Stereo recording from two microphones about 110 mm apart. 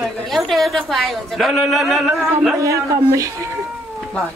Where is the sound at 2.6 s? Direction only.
30° right (ahead or behind).